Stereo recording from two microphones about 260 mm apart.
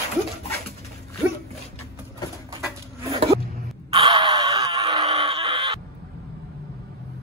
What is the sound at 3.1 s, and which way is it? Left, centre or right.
Zipper, right.